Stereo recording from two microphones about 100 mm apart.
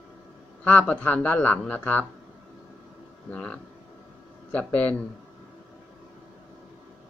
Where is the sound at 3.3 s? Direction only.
10° left (ahead or behind).